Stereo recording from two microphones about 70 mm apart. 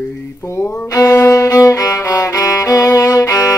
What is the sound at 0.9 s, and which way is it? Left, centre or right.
Music, left.